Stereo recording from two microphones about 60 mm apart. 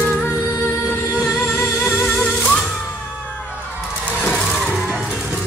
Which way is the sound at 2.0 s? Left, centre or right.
Centre.